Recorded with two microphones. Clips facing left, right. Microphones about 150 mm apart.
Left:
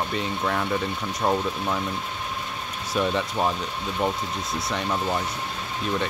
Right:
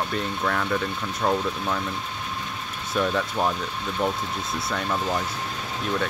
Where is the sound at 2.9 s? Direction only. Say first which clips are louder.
Even; centre (ahead or behind).